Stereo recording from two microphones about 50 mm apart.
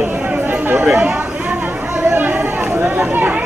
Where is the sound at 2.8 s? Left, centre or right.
Right.